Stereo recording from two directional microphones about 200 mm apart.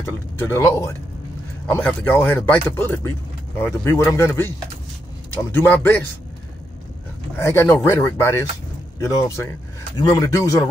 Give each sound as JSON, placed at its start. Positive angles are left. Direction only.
{"t": 0.0, "sound": "speech", "side_deg": 15}
{"t": 7.3, "sound": "speech", "side_deg": 15}